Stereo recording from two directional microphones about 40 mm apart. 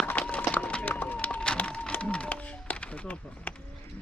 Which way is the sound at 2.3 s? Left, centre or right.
Left.